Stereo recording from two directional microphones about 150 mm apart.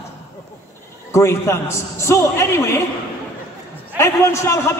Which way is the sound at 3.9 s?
15° left (ahead or behind).